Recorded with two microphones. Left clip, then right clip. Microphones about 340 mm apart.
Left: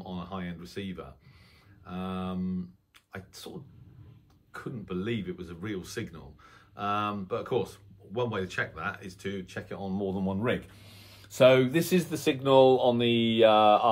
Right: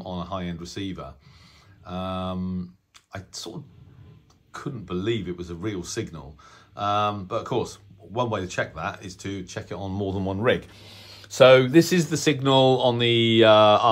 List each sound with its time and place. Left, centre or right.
0.1 s speech: centre
4.5 s speech: centre
10.0 s speech: right